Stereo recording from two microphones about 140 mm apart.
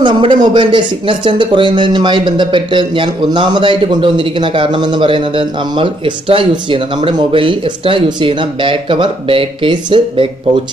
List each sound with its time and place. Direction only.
0.0 s speech: 35° right (ahead or behind)